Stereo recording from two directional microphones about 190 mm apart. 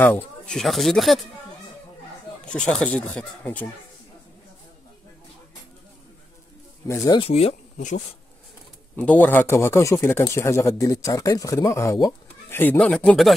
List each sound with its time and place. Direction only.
0.0 s speech: 5° left (ahead or behind)
2.4 s speech: 5° left (ahead or behind)
6.9 s speech: 25° left (ahead or behind)
8.9 s speech: 10° left (ahead or behind)